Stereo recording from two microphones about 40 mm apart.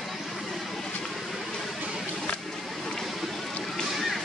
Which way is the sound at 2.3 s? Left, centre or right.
Left.